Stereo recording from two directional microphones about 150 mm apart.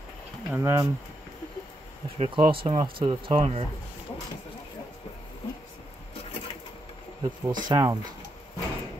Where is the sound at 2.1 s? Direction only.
35° right (ahead or behind).